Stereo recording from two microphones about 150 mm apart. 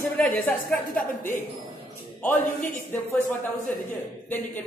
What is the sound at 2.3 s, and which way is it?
Speech, 60° left (ahead or behind).